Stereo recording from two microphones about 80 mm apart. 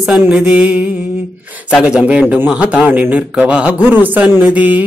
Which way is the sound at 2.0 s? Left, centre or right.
Centre.